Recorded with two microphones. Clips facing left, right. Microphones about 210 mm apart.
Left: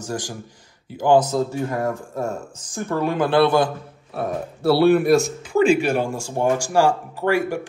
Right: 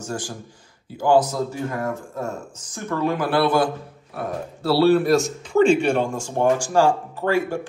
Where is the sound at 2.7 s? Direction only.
25° left (ahead or behind).